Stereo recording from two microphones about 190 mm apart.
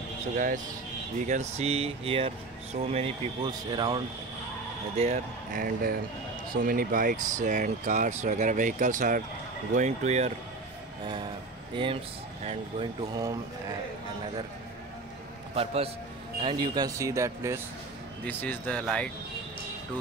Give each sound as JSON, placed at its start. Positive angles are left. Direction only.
{"t": 1.2, "sound": "speech", "side_deg": -35}
{"t": 4.9, "sound": "speech", "side_deg": -35}
{"t": 11.7, "sound": "speech", "side_deg": -25}
{"t": 13.1, "sound": "speech", "side_deg": -20}
{"t": 15.5, "sound": "speech", "side_deg": -30}
{"t": 18.2, "sound": "speech", "side_deg": 10}